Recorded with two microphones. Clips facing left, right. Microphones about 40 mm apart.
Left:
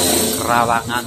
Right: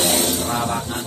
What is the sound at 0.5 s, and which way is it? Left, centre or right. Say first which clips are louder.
Speech: left 7 dB; left.